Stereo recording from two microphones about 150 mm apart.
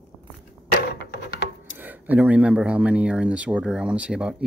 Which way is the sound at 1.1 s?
90° left.